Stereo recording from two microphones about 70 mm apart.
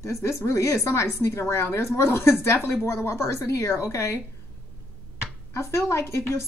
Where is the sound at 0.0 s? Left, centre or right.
Left.